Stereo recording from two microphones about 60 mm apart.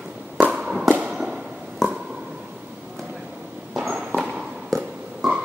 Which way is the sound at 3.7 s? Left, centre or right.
Centre.